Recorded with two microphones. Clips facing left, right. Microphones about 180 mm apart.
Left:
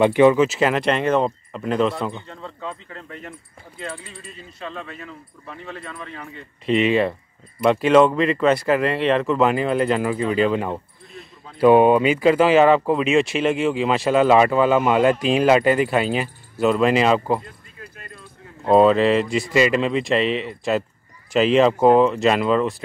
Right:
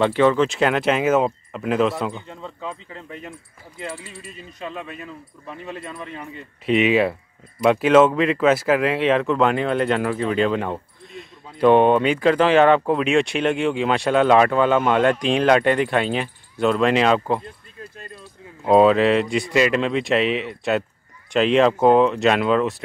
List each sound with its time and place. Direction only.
0.0 s speech: 15° left (ahead or behind); by 2.1 s centre (ahead or behind)
2.1 s speech: 10° right (ahead or behind)
3.9 s speech: 5° right (ahead or behind)
4.6 s speech: 15° right (ahead or behind)
6.6 s speech: centre (ahead or behind)
18.6 s speech: centre (ahead or behind)